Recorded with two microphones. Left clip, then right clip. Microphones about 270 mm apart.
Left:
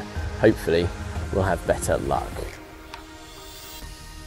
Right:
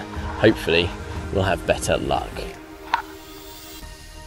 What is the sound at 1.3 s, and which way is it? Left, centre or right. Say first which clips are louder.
Speech: right 2 dB; right.